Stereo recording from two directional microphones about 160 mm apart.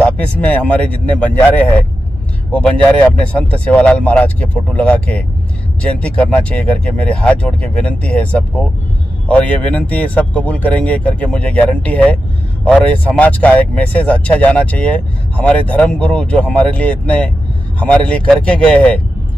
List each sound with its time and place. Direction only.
0.0 s speech: 10° left (ahead or behind)